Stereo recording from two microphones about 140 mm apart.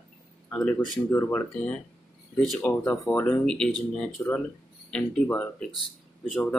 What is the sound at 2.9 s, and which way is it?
Speech, 20° left (ahead or behind).